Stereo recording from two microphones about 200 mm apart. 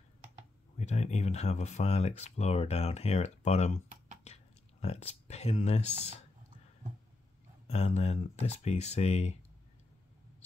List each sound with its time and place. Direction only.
0.7 s speech: 35° left (ahead or behind)
4.2 s a sound: 30° left (ahead or behind)
7.6 s speech: 30° left (ahead or behind)